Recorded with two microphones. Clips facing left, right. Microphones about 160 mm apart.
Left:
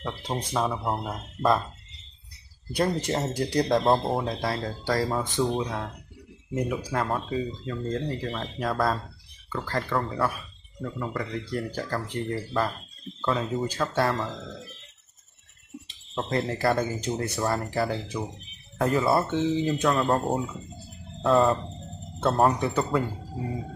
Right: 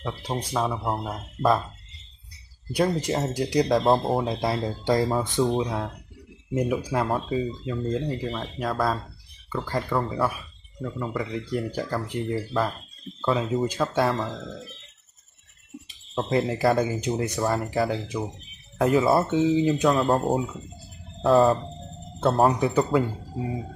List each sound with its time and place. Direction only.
0.0 s speech: centre (ahead or behind)
2.7 s speech: 5° right (ahead or behind)
4.2 s speech: 20° right (ahead or behind)
5.4 s speech: 5° right (ahead or behind)
7.2 s speech: 25° right (ahead or behind)
7.6 s speech: 5° right (ahead or behind)
16.2 s speech: 10° right (ahead or behind)